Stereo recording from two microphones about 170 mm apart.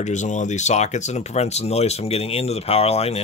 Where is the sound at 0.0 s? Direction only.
45° left (ahead or behind).